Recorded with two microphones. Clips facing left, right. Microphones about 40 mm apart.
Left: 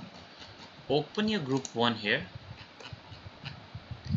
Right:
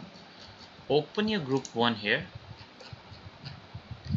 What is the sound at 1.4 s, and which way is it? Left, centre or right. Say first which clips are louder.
Speech: right 2 dB; left.